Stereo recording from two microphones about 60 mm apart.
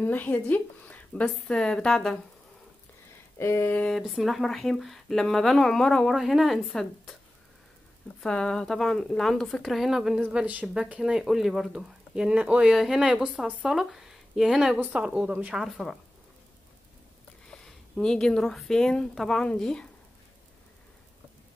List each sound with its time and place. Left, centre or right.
0.0 s speech: left; by 2.2 s centre
3.3 s a sound: left
4.0 s speech: centre
6.1 s speech: centre
6.7 s speech: centre
8.2 s speech: centre
10.3 s speech: right
12.7 s speech: centre
13.0 s speech: centre
13.7 s a sound: centre
14.5 s speech: centre; by 15.5 s right
15.5 s speech: centre
17.5 s a woman's voice: centre